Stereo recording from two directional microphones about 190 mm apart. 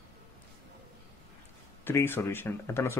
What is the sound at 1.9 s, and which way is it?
Speech, 10° left (ahead or behind).